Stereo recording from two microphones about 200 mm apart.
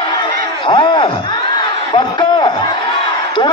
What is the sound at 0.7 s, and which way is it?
Speech, 25° left (ahead or behind).